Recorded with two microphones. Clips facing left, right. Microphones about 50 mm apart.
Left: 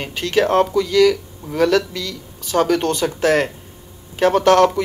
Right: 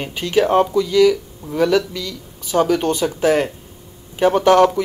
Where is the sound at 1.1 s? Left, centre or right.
Left.